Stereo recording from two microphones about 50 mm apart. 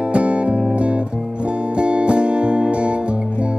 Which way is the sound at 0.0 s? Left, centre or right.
Right.